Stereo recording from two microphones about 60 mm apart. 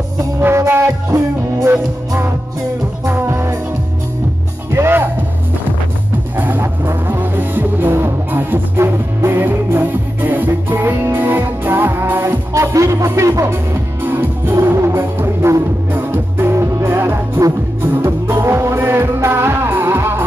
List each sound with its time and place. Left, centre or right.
0.4 s music: right
1.0 s music: right
3.1 s music: right
4.6 s music: right
6.3 s music: right
6.6 s music: right
12.7 s music: right
14.0 s music: right
14.5 s music: right